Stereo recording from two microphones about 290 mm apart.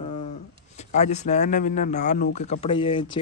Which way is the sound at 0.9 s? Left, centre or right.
Left.